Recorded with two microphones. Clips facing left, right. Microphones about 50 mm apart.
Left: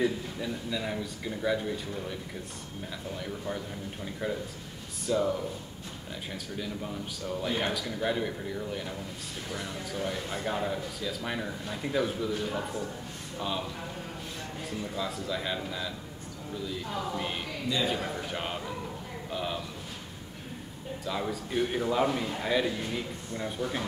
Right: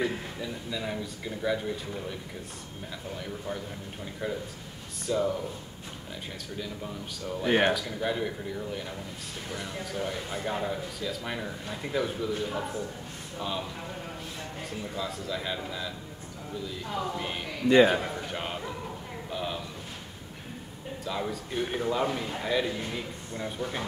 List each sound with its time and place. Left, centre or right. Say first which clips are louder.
0.4 s speech: left 1 dB; centre
3.2 s speech: even; centre
6.6 s speech: left 1 dB; centre
7.4 s a man's voice: right 8 dB; right
7.7 s speech: even; centre
14.8 s speech: left 1 dB; centre
17.6 s a man's voice: right 11 dB; right
18.0 s a sound: even; centre
21.0 s speech: even; centre